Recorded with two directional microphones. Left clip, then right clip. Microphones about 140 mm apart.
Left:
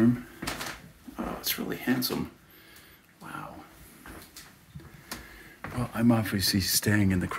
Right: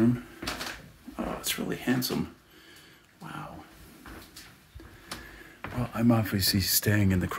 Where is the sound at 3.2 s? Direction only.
5° right (ahead or behind).